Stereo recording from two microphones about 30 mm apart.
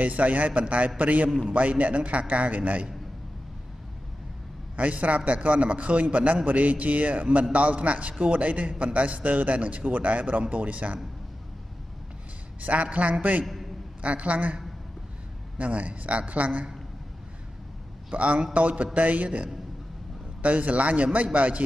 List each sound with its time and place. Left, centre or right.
0.0 s a man's voice: right
4.7 s a man's voice: right
9.9 s a man's voice: right
12.6 s a man's voice: right
18.1 s a man's voice: right
20.4 s a man's voice: right